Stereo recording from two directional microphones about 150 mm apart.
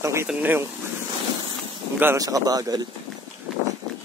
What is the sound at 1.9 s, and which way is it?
Speech, 20° right (ahead or behind).